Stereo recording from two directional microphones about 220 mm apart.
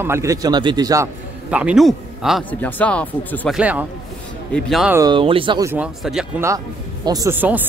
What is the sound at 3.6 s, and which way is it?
Speech, 5° right (ahead or behind).